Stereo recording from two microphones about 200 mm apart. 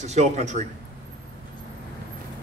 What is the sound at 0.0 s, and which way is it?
Speech, 35° right (ahead or behind).